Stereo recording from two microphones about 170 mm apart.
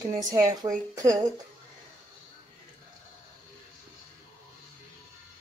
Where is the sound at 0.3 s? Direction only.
20° right (ahead or behind).